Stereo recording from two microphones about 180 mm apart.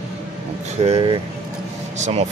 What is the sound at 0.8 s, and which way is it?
Speech, 25° right (ahead or behind).